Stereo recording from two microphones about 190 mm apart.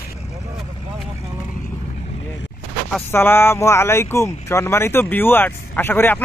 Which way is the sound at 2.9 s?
10° left (ahead or behind).